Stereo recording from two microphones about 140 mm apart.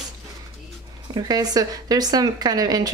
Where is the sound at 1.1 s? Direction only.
30° right (ahead or behind).